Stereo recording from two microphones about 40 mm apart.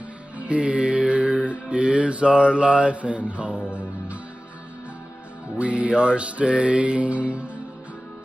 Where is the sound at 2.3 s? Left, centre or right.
Right.